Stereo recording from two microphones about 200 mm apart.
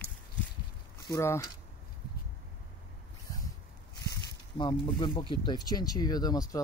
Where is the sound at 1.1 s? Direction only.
15° left (ahead or behind).